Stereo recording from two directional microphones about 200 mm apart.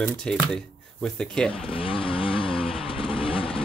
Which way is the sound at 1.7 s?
25° left (ahead or behind).